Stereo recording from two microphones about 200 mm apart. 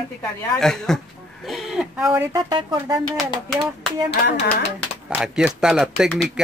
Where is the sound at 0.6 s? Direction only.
Centre (ahead or behind).